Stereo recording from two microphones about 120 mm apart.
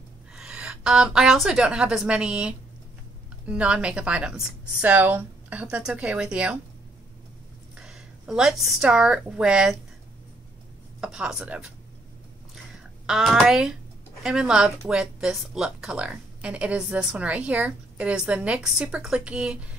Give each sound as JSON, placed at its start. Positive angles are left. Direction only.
{"t": 0.3, "sound": "a woman's voice", "side_deg": -10}
{"t": 7.7, "sound": "a woman's voice", "side_deg": -5}
{"t": 11.0, "sound": "speech", "side_deg": -5}
{"t": 13.0, "sound": "speech", "side_deg": -5}